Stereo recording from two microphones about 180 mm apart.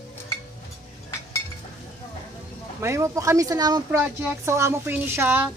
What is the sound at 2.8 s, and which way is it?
A woman's voice, 15° right (ahead or behind).